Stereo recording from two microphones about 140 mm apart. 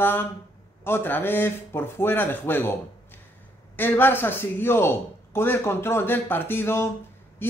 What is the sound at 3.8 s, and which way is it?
A man's voice, 15° left (ahead or behind).